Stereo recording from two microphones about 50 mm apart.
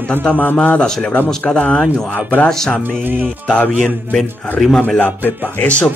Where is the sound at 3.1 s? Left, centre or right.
Right.